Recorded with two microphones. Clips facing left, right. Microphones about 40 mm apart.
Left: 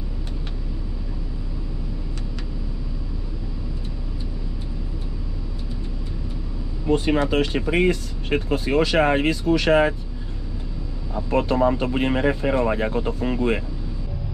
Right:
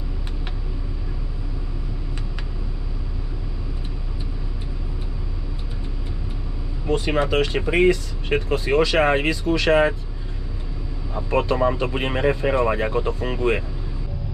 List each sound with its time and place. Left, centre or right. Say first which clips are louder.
6.9 s speech: left 1 dB; right
8.5 s speech: right 1 dB; right
11.2 s speech: left 1 dB; right